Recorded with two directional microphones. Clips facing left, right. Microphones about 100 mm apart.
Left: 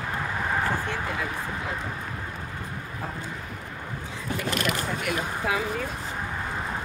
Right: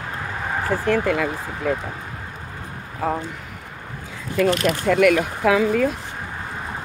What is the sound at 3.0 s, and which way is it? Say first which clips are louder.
Speech: right 14 dB; 90° right.